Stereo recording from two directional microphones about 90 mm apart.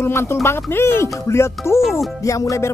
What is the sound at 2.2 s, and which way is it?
Speech, 40° left (ahead or behind).